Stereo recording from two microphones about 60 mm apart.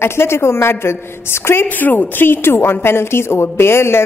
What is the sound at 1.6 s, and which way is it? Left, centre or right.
A woman's voice, left.